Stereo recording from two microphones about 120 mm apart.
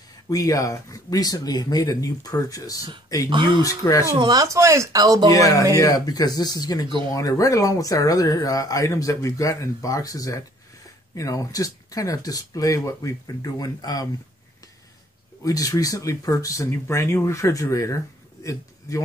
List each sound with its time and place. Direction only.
0.3 s speech: 30° left (ahead or behind)
3.3 s speech: 40° right (ahead or behind)
3.6 s speech: 30° left (ahead or behind)
4.2 s speech: 35° right (ahead or behind)
5.3 s speech: 30° left (ahead or behind)
15.4 s speech: 30° left (ahead or behind)